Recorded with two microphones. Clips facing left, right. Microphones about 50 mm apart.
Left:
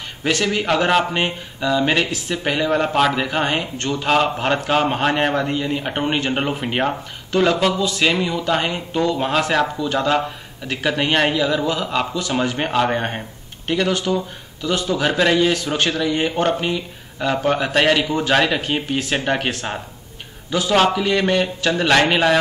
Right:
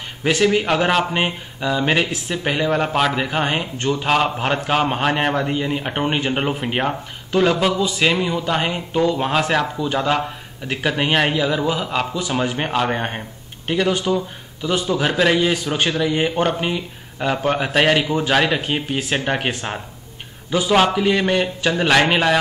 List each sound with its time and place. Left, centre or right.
0.2 s a man's voice: centre